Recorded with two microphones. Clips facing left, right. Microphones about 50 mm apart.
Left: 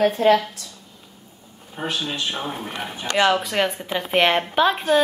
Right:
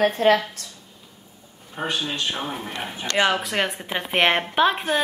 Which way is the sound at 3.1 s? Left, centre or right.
Centre.